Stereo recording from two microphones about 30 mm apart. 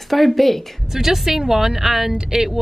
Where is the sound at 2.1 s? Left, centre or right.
Centre.